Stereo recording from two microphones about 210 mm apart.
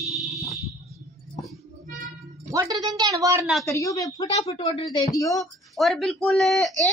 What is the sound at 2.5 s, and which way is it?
Speech, 15° right (ahead or behind).